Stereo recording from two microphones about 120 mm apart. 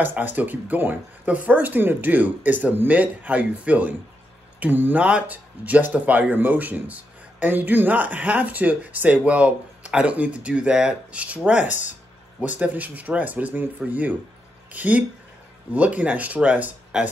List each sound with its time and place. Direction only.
0.0 s speech: 15° right (ahead or behind)